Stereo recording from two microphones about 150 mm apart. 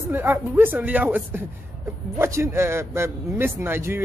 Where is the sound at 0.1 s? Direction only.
15° right (ahead or behind).